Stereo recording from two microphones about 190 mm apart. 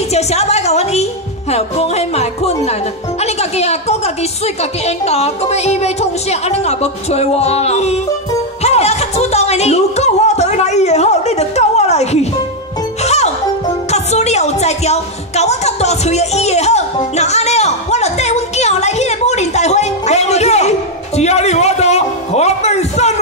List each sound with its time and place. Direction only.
0.1 s music: 35° left (ahead or behind)
1.5 s a woman's voice: 35° left (ahead or behind)
8.6 s music: 35° left (ahead or behind)